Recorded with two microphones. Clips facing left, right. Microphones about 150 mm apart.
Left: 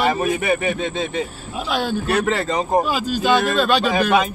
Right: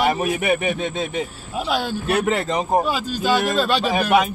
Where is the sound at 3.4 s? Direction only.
10° right (ahead or behind).